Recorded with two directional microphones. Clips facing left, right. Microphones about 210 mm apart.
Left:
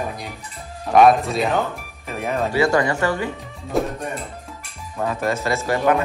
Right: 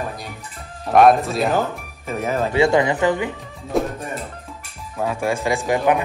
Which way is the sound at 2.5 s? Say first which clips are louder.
Right 2 dB; 25° right (ahead or behind).